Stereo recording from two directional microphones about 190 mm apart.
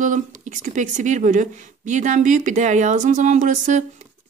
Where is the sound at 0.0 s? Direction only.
40° right (ahead or behind).